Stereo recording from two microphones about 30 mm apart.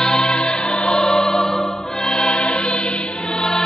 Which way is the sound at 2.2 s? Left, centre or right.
Left.